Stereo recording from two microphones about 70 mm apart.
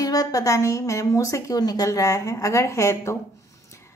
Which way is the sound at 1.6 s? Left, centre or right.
Left.